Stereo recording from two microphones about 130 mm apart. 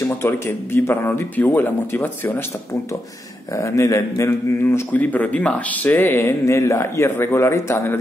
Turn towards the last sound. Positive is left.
turn(degrees=20)  # may be behind; listen again after turning